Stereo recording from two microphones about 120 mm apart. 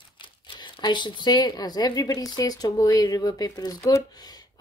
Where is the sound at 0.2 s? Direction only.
45° left (ahead or behind).